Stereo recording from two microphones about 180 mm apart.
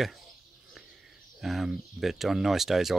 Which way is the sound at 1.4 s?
Centre (ahead or behind).